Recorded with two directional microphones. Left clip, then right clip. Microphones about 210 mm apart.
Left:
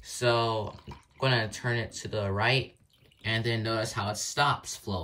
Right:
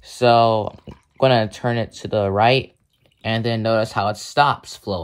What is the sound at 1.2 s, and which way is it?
Speech, 15° right (ahead or behind).